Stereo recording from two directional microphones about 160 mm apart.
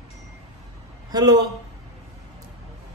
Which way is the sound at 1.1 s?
25° right (ahead or behind).